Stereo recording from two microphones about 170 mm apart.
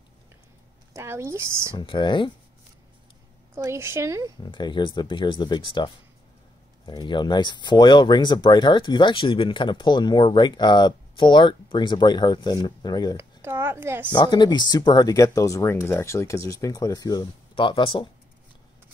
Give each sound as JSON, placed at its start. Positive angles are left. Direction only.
{"t": 0.9, "sound": "speech", "side_deg": -15}
{"t": 1.8, "sound": "speech", "side_deg": 30}
{"t": 3.5, "sound": "speech", "side_deg": -15}
{"t": 4.4, "sound": "speech", "side_deg": 25}
{"t": 6.9, "sound": "speech", "side_deg": 25}
{"t": 13.1, "sound": "speech", "side_deg": -15}
{"t": 14.1, "sound": "speech", "side_deg": 25}